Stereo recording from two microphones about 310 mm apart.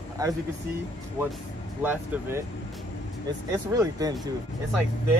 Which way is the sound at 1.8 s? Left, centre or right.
Centre.